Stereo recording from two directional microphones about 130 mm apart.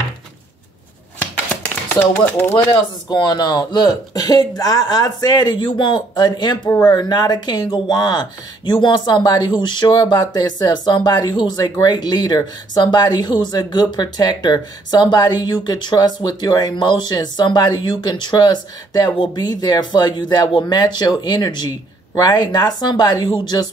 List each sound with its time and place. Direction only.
2.0 s speech: 15° left (ahead or behind)
2.5 s speech: 35° left (ahead or behind)